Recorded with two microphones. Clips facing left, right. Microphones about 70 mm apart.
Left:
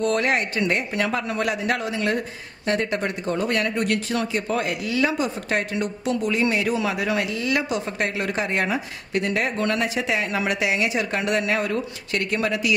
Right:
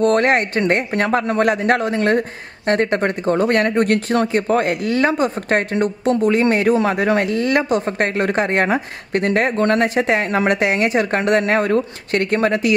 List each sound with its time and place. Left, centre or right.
0.0 s a man's voice: right